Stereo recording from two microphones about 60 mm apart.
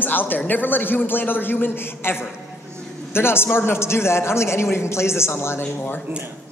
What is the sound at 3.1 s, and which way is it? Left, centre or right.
A man's voice, left.